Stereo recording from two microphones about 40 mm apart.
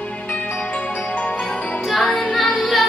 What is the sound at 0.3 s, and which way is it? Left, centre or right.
Music, left.